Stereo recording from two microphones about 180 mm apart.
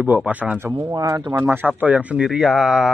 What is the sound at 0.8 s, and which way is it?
Speech, 20° right (ahead or behind).